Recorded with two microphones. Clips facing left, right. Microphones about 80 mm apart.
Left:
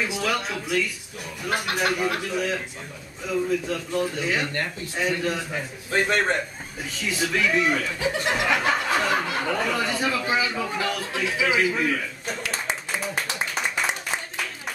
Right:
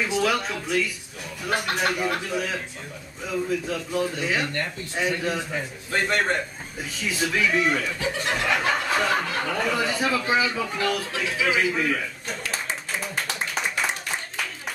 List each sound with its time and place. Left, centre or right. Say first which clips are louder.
0.0 s speech: right 2 dB; centre
5.9 s a man's voice: left 1 dB; centre
6.9 s speech: even; centre
13.0 s a sound: left 1 dB; centre